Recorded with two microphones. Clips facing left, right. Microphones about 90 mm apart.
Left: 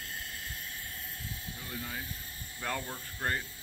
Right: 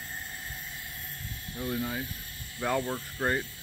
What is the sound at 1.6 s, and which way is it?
Speech, 20° right (ahead or behind).